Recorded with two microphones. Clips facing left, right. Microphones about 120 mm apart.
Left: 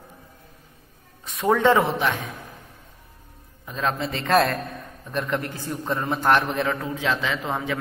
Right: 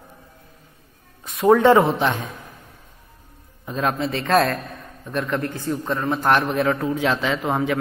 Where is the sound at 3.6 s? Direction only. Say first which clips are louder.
Right 3 dB; 15° right (ahead or behind).